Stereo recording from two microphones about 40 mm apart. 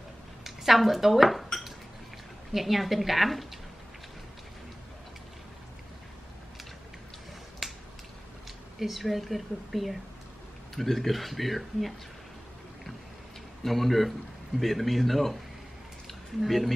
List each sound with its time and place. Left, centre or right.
0.4 s dishes: centre
2.5 s a woman's voice: centre
7.6 s finger snapping: centre
8.7 s a woman's voice: centre
13.7 s a woman's voice: centre
16.4 s a woman's voice: centre